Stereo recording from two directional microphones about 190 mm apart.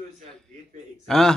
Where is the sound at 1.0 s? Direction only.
Centre (ahead or behind).